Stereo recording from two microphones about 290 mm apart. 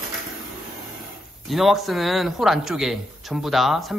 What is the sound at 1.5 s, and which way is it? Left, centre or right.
A man's voice, centre.